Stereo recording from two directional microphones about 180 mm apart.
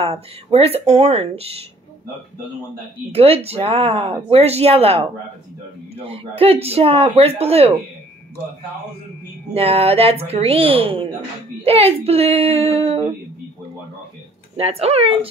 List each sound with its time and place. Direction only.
0.0 s speech: 35° right (ahead or behind)
3.1 s speech: 35° right (ahead or behind)
6.0 s speech: 30° right (ahead or behind)
9.5 s speech: 30° right (ahead or behind)
14.6 s speech: 35° right (ahead or behind)